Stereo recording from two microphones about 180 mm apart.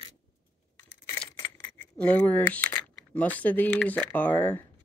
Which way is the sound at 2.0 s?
10° left (ahead or behind).